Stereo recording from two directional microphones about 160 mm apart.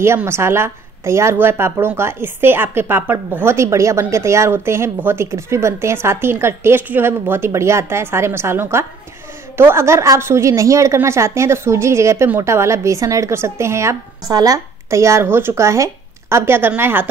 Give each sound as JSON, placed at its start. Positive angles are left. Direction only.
{"t": 0.0, "sound": "a woman's voice", "side_deg": -15}